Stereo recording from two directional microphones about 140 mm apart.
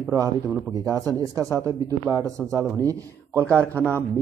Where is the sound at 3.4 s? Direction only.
10° left (ahead or behind).